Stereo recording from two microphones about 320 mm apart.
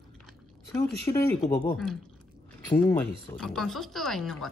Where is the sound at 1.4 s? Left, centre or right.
Left.